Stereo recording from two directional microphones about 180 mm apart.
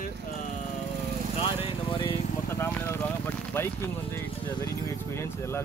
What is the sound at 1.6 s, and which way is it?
Speech, 30° left (ahead or behind).